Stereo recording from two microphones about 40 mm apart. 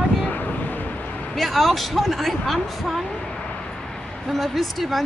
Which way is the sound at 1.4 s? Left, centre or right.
Centre.